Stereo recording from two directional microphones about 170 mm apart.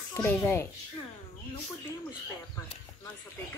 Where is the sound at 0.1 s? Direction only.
15° left (ahead or behind).